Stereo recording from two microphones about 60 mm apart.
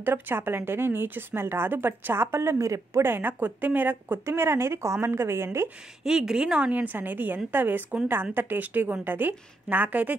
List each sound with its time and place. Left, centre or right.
0.0 s speech: right
6.0 s a woman's voice: centre; by 10.1 s right